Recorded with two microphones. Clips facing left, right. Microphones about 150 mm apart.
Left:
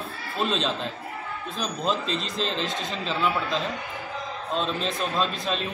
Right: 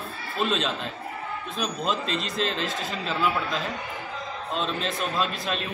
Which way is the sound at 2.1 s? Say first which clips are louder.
Even; centre (ahead or behind).